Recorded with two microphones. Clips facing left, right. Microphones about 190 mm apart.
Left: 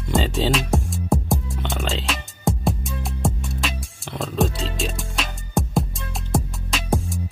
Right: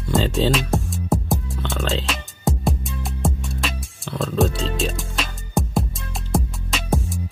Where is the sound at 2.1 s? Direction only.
Centre (ahead or behind).